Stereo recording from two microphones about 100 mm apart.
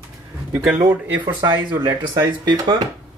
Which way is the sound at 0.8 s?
20° right (ahead or behind).